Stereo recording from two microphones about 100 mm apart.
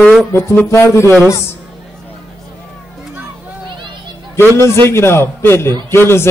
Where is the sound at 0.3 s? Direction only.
25° left (ahead or behind).